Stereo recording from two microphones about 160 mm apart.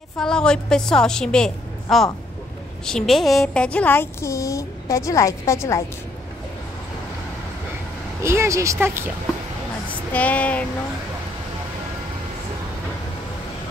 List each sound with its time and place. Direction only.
0.2 s a woman's voice: 5° left (ahead or behind)
8.2 s speech: 15° right (ahead or behind)
10.1 s a woman's voice: 10° left (ahead or behind)